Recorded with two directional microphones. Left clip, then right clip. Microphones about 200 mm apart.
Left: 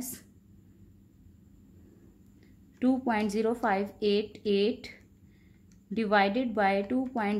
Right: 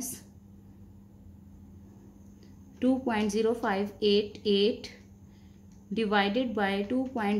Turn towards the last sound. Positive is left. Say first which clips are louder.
# even
turn(degrees=25)  # may be behind; listen again after turning